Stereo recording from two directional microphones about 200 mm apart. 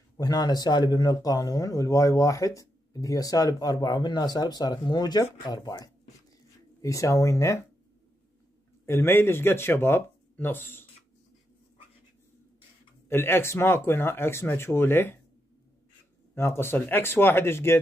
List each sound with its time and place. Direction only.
0.2 s speech: 20° left (ahead or behind)
8.8 s speech: 10° left (ahead or behind)
13.1 s speech: 10° left (ahead or behind)
16.3 s speech: 10° left (ahead or behind)